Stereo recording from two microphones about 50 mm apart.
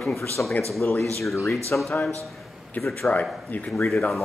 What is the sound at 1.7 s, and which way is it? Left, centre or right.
Speech, left.